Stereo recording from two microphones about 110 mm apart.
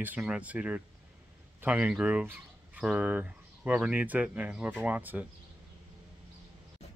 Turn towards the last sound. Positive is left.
turn(degrees=-15)  # may be behind; listen again after turning